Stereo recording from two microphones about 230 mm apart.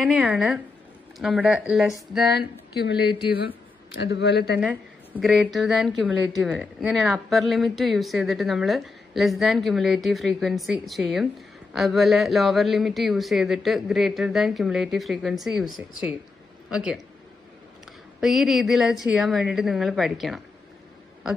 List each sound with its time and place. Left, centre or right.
0.0 s a woman's voice: centre
2.3 s speech: left
4.6 s a woman's voice: centre
18.2 s a woman's voice: centre